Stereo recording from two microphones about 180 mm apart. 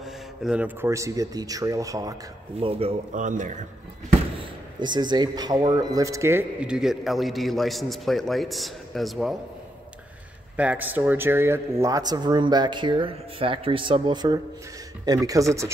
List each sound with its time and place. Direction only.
0.0 s speech: 5° right (ahead or behind); by 2.1 s 20° right (ahead or behind)
2.6 s speech: 35° right (ahead or behind)
4.4 s speech: 25° right (ahead or behind); by 9.4 s centre (ahead or behind)
10.5 s speech: 10° right (ahead or behind)